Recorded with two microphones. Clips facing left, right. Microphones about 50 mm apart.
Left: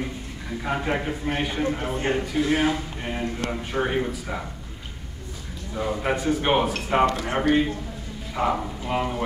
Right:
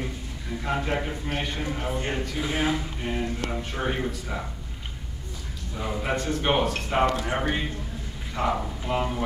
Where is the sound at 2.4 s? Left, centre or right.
Centre.